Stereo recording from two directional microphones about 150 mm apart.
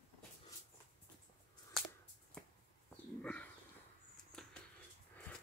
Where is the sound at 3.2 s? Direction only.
10° left (ahead or behind).